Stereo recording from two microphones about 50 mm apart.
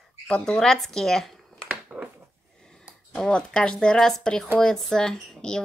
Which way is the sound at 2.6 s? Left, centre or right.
Centre.